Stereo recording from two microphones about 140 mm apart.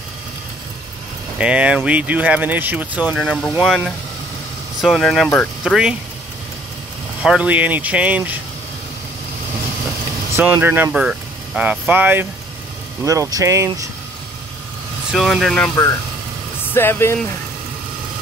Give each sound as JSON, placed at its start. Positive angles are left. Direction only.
{"t": 1.4, "sound": "speech", "side_deg": -10}
{"t": 7.2, "sound": "speech", "side_deg": -10}
{"t": 10.3, "sound": "speech", "side_deg": -15}
{"t": 15.1, "sound": "speech", "side_deg": 0}
{"t": 16.7, "sound": "speech", "side_deg": 15}